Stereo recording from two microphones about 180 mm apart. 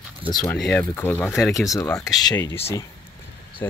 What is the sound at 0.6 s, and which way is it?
Speech, 5° left (ahead or behind).